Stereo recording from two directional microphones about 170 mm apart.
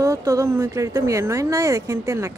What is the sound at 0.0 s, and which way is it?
Speech, 20° right (ahead or behind).